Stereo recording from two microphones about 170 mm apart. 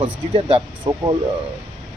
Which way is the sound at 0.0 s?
35° right (ahead or behind).